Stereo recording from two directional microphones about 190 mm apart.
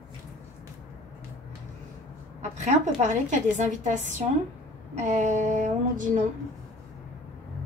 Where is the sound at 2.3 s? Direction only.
40° right (ahead or behind).